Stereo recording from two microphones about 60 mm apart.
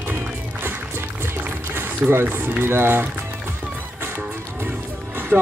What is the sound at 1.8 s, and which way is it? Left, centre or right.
Speech, right.